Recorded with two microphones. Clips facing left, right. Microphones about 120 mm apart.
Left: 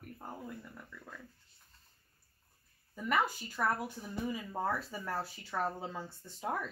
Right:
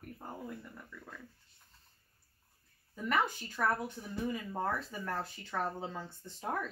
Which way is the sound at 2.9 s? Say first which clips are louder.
Even; 5° left (ahead or behind).